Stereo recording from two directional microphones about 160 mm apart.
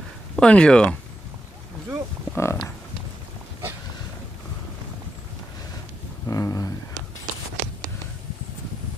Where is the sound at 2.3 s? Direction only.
15° left (ahead or behind).